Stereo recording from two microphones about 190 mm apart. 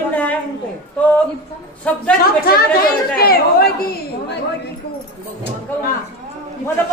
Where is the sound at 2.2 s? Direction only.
50° left (ahead or behind).